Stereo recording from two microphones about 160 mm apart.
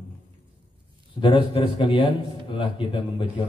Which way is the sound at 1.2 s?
30° left (ahead or behind).